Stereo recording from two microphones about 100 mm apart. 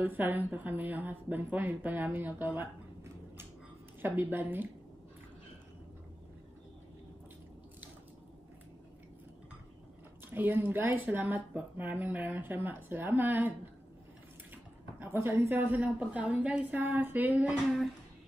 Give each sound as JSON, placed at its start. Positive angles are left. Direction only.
{"t": 0.0, "sound": "a woman's voice", "side_deg": -20}
{"t": 10.3, "sound": "a woman's voice", "side_deg": -20}
{"t": 14.5, "sound": "speech", "side_deg": -20}